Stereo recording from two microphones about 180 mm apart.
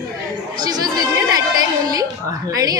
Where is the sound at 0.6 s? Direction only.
20° right (ahead or behind).